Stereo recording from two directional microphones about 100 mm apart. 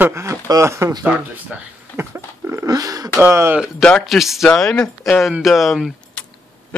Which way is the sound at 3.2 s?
25° right (ahead or behind).